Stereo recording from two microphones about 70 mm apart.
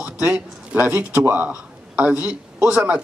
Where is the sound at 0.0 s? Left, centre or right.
Right.